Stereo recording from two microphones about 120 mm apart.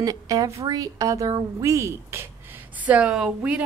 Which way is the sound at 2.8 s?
10° right (ahead or behind).